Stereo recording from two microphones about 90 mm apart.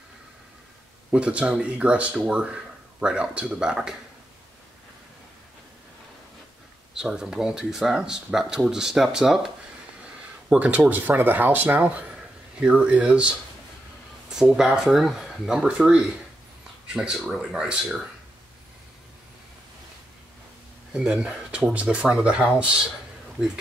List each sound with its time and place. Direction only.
1.1 s speech: 10° right (ahead or behind)
6.9 s speech: 5° right (ahead or behind)
10.0 s a sound: 15° right (ahead or behind)
10.9 s speech: 20° right (ahead or behind)
14.3 s speech: 5° right (ahead or behind)
20.9 s speech: 10° right (ahead or behind)